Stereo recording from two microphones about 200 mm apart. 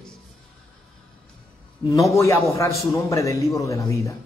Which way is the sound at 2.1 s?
15° left (ahead or behind).